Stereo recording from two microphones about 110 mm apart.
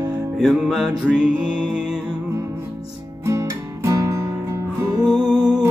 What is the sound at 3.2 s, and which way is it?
Music, 25° right (ahead or behind).